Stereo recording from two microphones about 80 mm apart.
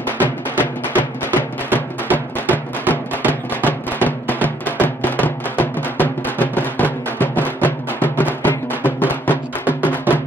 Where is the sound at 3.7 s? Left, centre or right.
Left.